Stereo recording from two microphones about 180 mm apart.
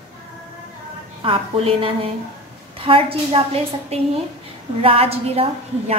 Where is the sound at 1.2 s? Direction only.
30° right (ahead or behind).